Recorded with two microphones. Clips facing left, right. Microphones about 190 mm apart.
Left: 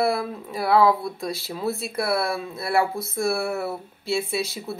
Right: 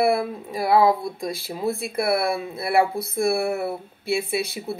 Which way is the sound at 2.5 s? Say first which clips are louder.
Right 2 dB; 55° right (ahead or behind).